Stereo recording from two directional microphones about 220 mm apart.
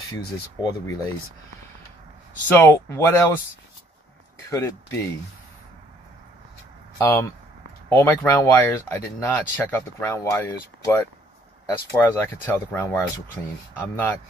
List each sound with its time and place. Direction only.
0.6 s speech: 15° left (ahead or behind)
2.4 s speech: 10° left (ahead or behind)
4.5 s speech: 10° left (ahead or behind)
7.0 s speech: 10° left (ahead or behind)